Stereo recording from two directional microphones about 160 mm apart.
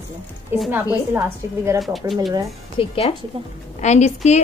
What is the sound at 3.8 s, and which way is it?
Speech, 45° left (ahead or behind).